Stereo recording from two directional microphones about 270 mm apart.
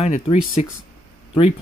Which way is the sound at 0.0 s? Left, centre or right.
Left.